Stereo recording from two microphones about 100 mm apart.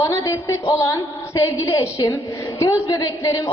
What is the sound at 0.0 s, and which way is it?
A woman's voice, 35° left (ahead or behind).